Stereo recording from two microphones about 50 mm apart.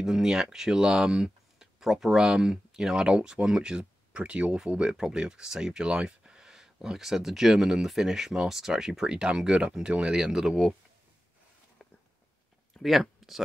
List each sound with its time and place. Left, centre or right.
0.0 s speech: centre
12.7 s speech: centre